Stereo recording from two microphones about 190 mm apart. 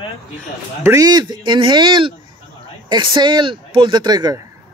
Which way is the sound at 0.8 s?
20° right (ahead or behind).